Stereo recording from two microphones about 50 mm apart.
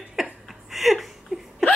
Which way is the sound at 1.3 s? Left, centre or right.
Right.